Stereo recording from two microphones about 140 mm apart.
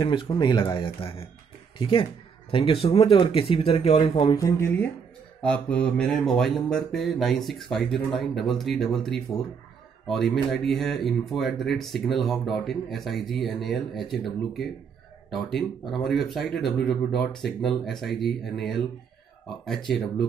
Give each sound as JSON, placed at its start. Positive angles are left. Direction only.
{"t": 0.0, "sound": "speech", "side_deg": 35}
{"t": 4.4, "sound": "speech", "side_deg": 20}
{"t": 5.4, "sound": "speech", "side_deg": 10}
{"t": 15.9, "sound": "speech", "side_deg": 0}